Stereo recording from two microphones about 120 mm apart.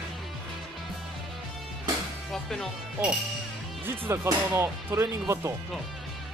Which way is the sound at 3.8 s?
20° right (ahead or behind).